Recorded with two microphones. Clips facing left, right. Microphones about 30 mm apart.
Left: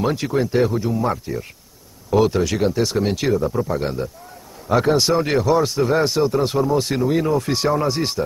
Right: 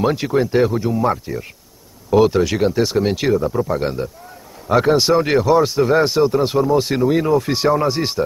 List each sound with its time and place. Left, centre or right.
0.0 s speech: centre